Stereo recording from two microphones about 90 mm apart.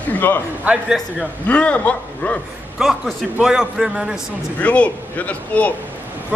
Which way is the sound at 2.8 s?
5° right (ahead or behind).